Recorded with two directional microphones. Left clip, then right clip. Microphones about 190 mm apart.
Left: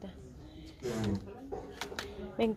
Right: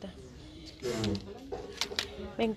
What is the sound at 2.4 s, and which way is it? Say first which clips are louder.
Speech: even; 5° left (ahead or behind).